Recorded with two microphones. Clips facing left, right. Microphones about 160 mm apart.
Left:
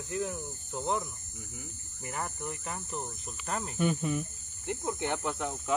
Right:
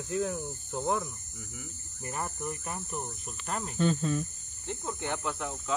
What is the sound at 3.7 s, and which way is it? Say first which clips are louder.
Speech: right 2 dB; 15° left (ahead or behind).